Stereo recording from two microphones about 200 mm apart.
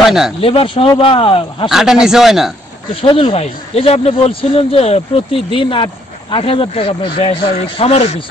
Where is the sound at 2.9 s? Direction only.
25° left (ahead or behind).